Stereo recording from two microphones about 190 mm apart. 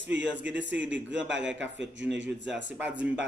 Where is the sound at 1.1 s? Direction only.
70° right (ahead or behind).